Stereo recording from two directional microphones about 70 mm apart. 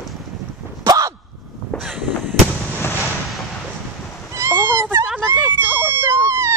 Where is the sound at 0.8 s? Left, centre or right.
Right.